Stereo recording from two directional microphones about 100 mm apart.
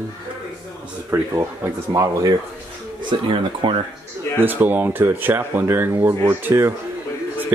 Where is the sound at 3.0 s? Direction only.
50° right (ahead or behind).